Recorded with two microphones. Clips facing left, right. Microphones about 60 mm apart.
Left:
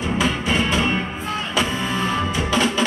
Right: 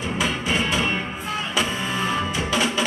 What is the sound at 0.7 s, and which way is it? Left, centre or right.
Music, centre.